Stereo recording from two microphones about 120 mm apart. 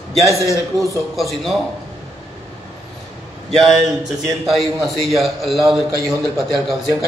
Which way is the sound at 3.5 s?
Centre (ahead or behind).